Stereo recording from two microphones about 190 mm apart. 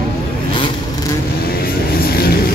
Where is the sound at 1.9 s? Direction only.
50° left (ahead or behind).